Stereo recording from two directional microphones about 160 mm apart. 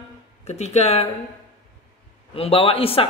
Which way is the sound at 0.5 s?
45° left (ahead or behind).